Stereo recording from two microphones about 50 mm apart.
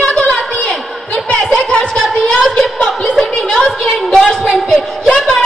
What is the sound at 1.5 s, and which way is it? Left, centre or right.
Chuckle, centre.